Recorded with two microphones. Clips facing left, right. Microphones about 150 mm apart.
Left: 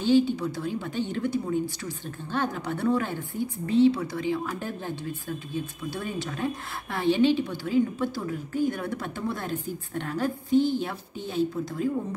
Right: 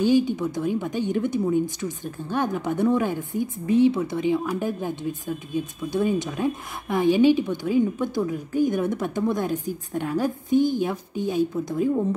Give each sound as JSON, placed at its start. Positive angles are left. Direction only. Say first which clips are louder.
{"t": 0.0, "sound": "a woman's voice", "louder": "right 2 dB", "side_deg": -15}